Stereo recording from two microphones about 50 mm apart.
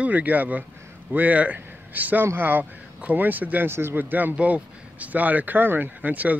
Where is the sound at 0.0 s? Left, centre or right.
Right.